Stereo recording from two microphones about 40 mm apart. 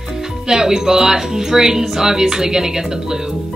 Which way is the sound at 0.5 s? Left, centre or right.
Centre.